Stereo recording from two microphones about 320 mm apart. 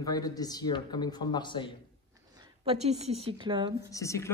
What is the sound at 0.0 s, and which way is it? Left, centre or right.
Speech, centre.